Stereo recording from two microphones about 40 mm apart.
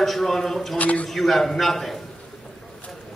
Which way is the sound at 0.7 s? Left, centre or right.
Left.